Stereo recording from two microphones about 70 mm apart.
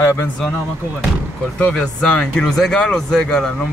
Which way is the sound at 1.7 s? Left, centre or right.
Centre.